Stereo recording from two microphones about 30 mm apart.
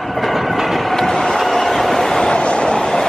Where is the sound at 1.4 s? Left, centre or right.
Centre.